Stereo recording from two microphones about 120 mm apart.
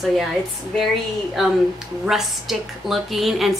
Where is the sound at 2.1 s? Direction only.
5° right (ahead or behind).